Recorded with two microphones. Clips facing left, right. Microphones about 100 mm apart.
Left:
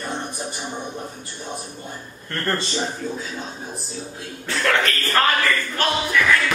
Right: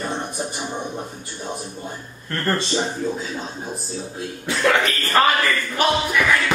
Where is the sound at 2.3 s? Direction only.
Centre (ahead or behind).